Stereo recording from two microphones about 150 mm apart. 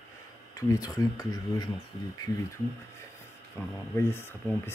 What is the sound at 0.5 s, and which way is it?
Speech, 20° left (ahead or behind).